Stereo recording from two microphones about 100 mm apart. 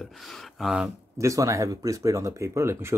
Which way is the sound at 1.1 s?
35° right (ahead or behind).